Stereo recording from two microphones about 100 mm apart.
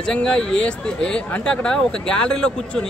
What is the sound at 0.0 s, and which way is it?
Speech, 10° left (ahead or behind).